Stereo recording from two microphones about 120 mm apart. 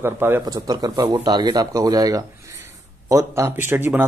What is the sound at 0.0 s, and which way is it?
Speech, 20° right (ahead or behind).